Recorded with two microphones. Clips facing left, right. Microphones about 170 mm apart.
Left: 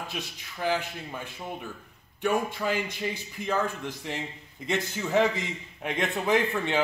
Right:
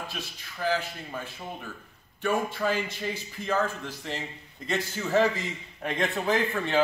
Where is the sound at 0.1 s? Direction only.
20° left (ahead or behind).